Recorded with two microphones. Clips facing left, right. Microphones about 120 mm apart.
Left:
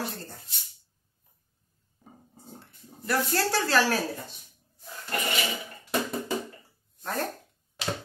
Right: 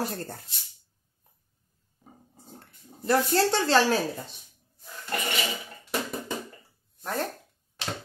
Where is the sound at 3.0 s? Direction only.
25° right (ahead or behind).